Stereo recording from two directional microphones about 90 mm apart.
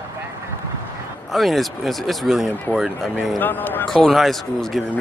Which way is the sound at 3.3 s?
20° left (ahead or behind).